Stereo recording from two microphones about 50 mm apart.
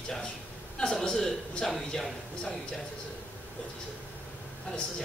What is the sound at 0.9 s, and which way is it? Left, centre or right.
A man's voice, centre.